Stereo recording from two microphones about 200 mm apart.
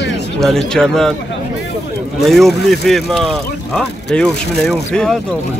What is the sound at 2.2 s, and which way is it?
Speech, centre (ahead or behind).